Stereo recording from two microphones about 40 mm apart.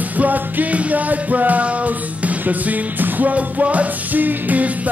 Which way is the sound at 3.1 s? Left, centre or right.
Right.